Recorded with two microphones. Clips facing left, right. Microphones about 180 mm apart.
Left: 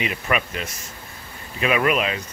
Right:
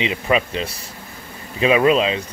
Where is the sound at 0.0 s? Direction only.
25° right (ahead or behind).